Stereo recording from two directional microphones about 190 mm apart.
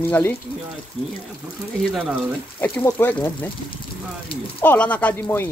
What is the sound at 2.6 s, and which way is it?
Speech, 10° left (ahead or behind).